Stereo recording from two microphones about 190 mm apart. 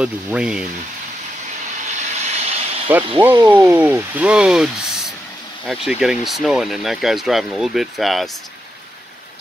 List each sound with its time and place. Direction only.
0.0 s speech: 5° right (ahead or behind)
1.9 s vehicle: 40° right (ahead or behind)
2.9 s speech: 10° right (ahead or behind)
3.3 s speech: 20° right (ahead or behind)
3.7 s speech: 10° right (ahead or behind)